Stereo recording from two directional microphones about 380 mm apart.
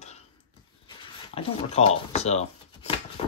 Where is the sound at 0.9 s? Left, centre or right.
Centre.